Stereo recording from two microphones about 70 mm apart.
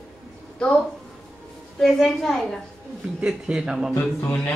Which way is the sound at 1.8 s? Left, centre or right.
Centre.